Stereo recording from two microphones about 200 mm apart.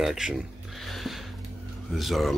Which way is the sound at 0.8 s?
Centre (ahead or behind).